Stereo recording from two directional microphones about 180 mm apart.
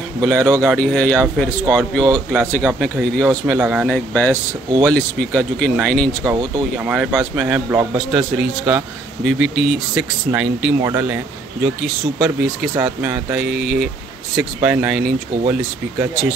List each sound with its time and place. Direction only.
0.2 s a man's voice: 5° left (ahead or behind)
3.9 s a man's voice: 10° left (ahead or behind)
6.2 s speech: 25° right (ahead or behind)
6.8 s a man's voice: 5° right (ahead or behind)
10.8 s speech: 15° right (ahead or behind)
11.6 s a man's voice: 5° right (ahead or behind)
12.7 s a man's voice: 15° right (ahead or behind)